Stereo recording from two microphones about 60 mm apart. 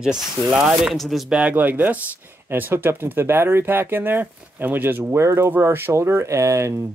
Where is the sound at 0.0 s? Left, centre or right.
Centre.